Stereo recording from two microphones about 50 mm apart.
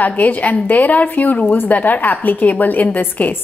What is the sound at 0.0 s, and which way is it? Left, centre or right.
Speech, left.